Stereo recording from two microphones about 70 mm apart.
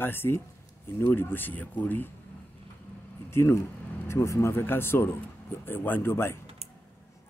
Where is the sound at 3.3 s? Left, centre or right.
Left.